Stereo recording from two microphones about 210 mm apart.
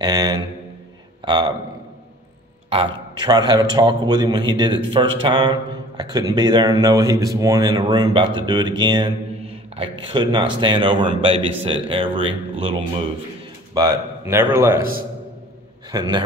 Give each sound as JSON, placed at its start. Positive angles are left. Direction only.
{"t": 0.0, "sound": "a man's voice", "side_deg": -20}
{"t": 2.7, "sound": "speech", "side_deg": -20}
{"t": 13.7, "sound": "a man's voice", "side_deg": -15}
{"t": 15.9, "sound": "speech", "side_deg": -20}